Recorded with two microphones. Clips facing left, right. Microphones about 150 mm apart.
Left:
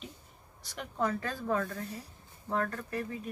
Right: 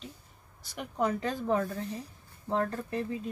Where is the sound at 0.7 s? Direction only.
15° right (ahead or behind).